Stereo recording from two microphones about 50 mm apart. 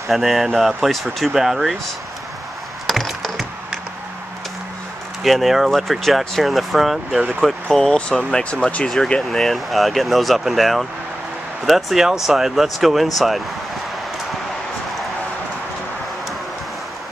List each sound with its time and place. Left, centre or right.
0.1 s speech: centre
2.9 s a sound: centre
5.2 s speech: centre
7.7 s speech: centre
9.3 s speech: centre